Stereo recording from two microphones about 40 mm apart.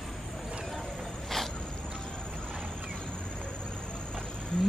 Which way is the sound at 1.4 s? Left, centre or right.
Centre.